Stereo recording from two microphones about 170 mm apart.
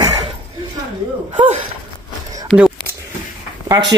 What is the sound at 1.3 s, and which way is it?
Speech, 40° right (ahead or behind).